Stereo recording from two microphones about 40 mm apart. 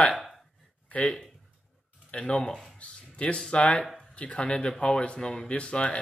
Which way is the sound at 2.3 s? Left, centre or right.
Left.